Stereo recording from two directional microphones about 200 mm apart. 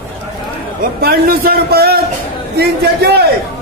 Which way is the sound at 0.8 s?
50° right (ahead or behind).